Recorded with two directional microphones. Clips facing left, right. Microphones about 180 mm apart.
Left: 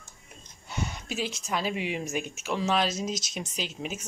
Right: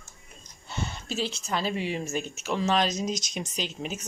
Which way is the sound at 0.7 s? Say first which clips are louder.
Right 1 dB; 10° left (ahead or behind).